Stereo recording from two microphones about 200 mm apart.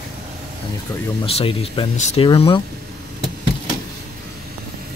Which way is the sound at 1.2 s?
30° left (ahead or behind).